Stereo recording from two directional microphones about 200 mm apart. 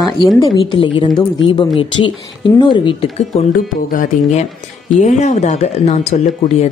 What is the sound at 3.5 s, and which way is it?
A woman's voice, 40° left (ahead or behind).